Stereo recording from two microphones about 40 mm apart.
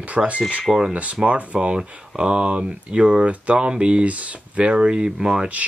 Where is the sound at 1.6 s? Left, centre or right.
Centre; by 4.6 s right.